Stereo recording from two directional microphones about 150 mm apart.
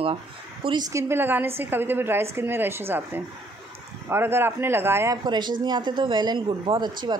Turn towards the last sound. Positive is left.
turn(degrees=-30)  # may be behind; listen again after turning